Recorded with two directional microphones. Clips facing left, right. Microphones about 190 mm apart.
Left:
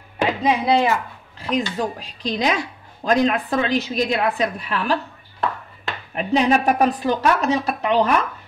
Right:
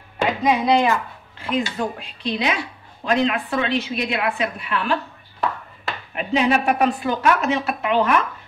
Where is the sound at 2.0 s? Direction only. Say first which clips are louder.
Left 1 dB; 40° left (ahead or behind).